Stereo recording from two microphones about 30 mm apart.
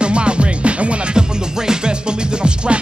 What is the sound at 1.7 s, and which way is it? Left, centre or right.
Music, right.